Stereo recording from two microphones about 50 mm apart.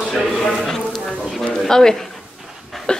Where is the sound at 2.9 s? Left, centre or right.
Centre.